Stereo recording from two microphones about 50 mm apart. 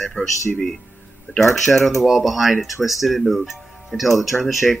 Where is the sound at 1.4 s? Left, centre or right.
Centre.